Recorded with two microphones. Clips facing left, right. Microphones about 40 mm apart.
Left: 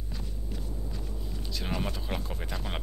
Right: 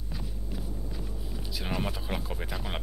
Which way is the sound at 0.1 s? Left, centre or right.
Centre.